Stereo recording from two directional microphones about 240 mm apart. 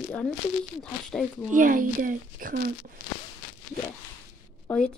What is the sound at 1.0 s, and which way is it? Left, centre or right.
Speech, centre.